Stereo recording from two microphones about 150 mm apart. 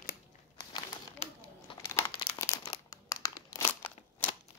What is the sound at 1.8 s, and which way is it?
Crumpling, 20° left (ahead or behind).